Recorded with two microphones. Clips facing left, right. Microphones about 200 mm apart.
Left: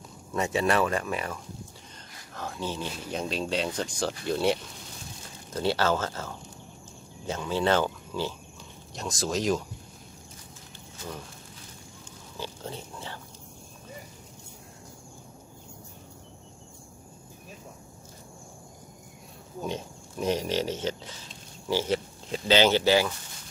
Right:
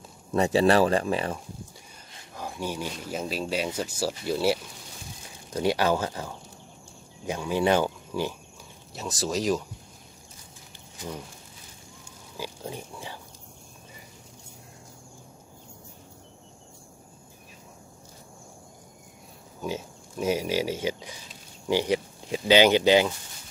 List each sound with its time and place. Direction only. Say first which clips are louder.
0.3 s speech: right 5 dB; 30° right (ahead or behind)
2.3 s speech: right 1 dB; 10° right (ahead or behind)
8.9 s speech: right 1 dB; centre (ahead or behind)
12.4 s speech: right 1 dB; 10° right (ahead or behind)
19.6 s a sound: right 1 dB; 5° right (ahead or behind)
21.6 s speech: right 2 dB; 15° right (ahead or behind)